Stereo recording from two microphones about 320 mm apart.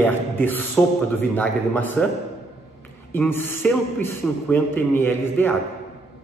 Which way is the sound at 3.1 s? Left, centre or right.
Centre.